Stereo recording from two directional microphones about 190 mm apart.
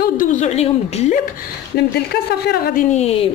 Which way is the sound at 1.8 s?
60° left (ahead or behind).